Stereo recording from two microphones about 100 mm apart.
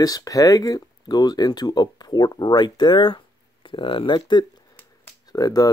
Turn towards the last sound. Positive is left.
turn(degrees=40)  # may be behind; listen again after turning